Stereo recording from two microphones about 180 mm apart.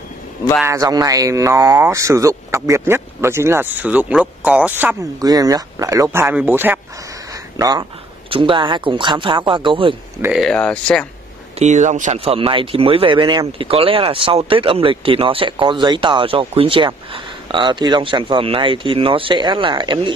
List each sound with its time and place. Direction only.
0.7 s speech: 20° right (ahead or behind)
5.2 s speech: 20° right (ahead or behind)
10.2 s speech: centre (ahead or behind)
11.5 s speech: 40° right (ahead or behind)